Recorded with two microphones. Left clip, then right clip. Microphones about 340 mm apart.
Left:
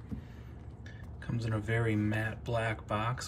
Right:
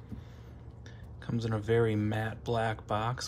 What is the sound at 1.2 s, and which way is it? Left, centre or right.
Speech, centre.